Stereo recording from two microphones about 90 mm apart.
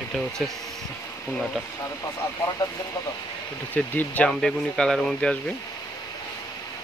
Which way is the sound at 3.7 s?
20° left (ahead or behind).